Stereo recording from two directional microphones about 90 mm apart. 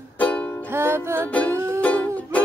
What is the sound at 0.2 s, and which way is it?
Music, 15° left (ahead or behind).